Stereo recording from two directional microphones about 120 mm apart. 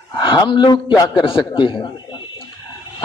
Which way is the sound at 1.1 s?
45° left (ahead or behind).